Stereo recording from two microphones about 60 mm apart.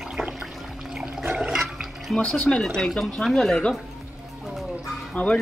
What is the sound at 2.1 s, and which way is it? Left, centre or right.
Speech, centre.